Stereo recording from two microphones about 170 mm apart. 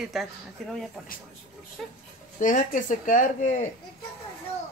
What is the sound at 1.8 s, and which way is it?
Speech, centre (ahead or behind).